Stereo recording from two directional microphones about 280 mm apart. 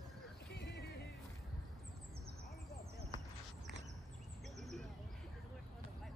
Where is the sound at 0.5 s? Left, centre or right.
Left.